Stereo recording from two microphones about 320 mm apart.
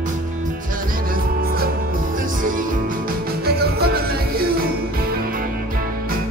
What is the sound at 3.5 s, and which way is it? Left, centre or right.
Music, right.